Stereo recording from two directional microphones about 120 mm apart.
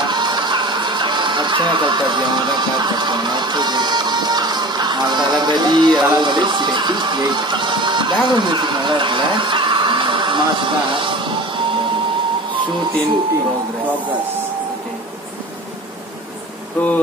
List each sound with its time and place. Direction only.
0.0 s speech: 40° right (ahead or behind)
16.8 s bee: 15° left (ahead or behind)